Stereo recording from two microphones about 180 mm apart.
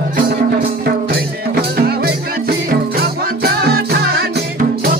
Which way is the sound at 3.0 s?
60° right (ahead or behind).